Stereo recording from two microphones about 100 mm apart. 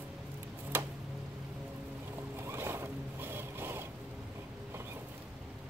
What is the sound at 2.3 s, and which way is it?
Boat, 25° right (ahead or behind).